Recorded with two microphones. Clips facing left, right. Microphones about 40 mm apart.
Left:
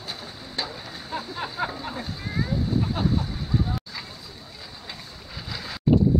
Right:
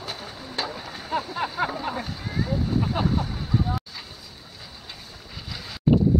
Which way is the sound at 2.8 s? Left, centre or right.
Centre.